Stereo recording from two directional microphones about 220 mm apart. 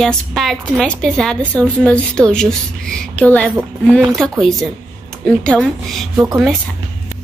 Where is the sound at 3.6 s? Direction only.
Centre (ahead or behind).